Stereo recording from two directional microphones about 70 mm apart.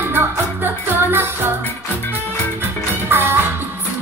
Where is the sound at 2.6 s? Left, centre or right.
Right.